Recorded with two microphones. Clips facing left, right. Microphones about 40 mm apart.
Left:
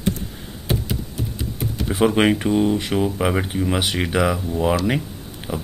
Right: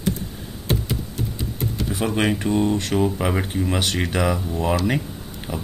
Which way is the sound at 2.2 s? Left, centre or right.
Centre.